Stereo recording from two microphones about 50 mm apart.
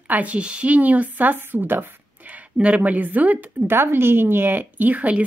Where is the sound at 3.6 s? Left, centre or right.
Right.